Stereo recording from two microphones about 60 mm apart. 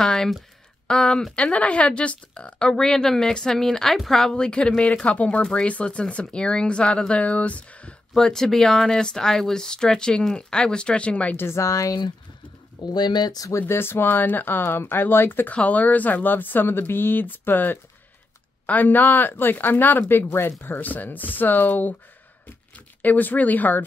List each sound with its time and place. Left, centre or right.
0.0 s speech: centre
8.1 s speech: centre
11.3 s a woman's voice: left
13.3 s speech: left
13.6 s speech: left
15.5 s speech: left
23.0 s speech: left